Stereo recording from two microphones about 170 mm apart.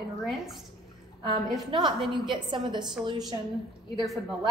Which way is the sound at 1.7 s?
25° right (ahead or behind).